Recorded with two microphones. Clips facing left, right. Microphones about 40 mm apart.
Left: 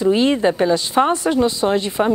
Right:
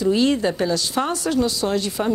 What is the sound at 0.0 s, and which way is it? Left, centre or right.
Speech, left.